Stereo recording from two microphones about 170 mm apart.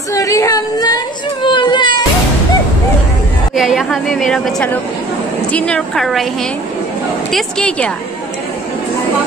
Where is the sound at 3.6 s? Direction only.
Centre (ahead or behind).